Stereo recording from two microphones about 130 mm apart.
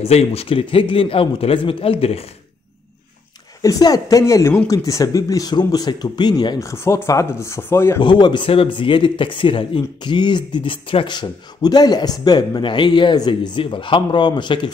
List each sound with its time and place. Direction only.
0.0 s speech: 50° left (ahead or behind)
3.6 s speech: 25° left (ahead or behind)
8.0 s speech: 35° left (ahead or behind)